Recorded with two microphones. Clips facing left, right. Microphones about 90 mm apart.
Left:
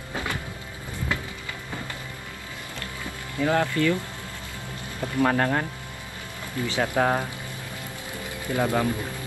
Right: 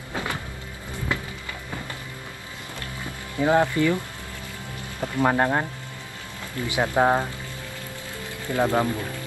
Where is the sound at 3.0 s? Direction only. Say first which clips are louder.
Right 3 dB; 20° right (ahead or behind).